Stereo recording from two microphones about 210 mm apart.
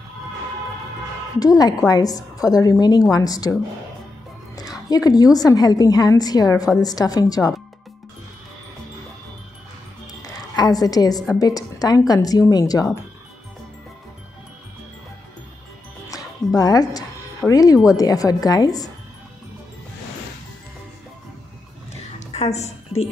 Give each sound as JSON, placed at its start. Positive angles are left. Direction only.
{"t": 1.4, "sound": "a woman's voice", "side_deg": 15}
{"t": 4.8, "sound": "a woman's voice", "side_deg": 15}
{"t": 10.2, "sound": "a woman's voice", "side_deg": 15}
{"t": 16.1, "sound": "music", "side_deg": 15}
{"t": 17.9, "sound": "a woman's voice", "side_deg": 15}
{"t": 22.3, "sound": "a woman's voice", "side_deg": 30}